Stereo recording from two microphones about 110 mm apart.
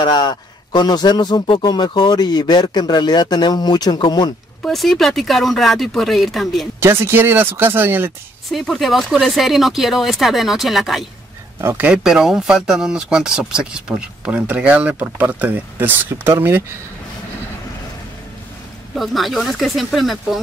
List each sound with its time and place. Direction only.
0.0 s speech: 40° left (ahead or behind)
4.6 s speech: centre (ahead or behind)
6.8 s speech: 20° right (ahead or behind)
8.5 s speech: centre (ahead or behind)
11.6 s speech: 15° right (ahead or behind)
18.9 s speech: centre (ahead or behind)